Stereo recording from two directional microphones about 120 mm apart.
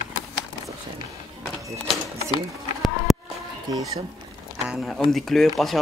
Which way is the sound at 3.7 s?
30° right (ahead or behind).